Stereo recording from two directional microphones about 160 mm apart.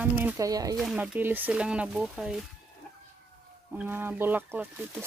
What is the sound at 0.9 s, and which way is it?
Speech, 10° right (ahead or behind).